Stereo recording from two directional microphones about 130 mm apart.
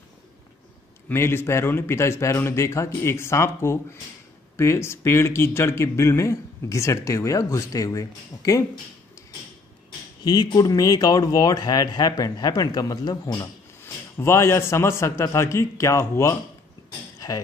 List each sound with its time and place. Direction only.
1.0 s speech: 20° left (ahead or behind)
10.2 s speech: 30° left (ahead or behind)
14.1 s speech: 20° left (ahead or behind)
17.2 s a sound: 30° left (ahead or behind)